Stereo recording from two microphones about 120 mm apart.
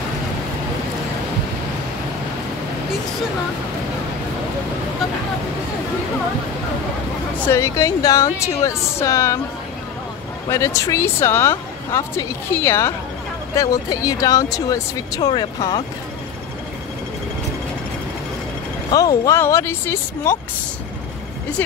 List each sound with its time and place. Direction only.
7.5 s speech: 25° left (ahead or behind)
10.5 s speech: 25° left (ahead or behind)
18.9 s speech: 30° left (ahead or behind)